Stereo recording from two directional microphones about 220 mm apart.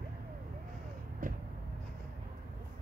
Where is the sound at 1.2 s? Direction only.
40° right (ahead or behind).